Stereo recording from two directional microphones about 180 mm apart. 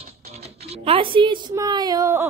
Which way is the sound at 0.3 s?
35° right (ahead or behind).